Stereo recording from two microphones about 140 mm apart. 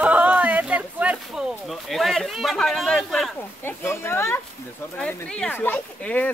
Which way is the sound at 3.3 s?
15° left (ahead or behind).